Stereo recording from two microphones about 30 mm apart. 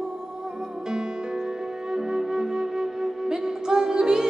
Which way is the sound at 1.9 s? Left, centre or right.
Right.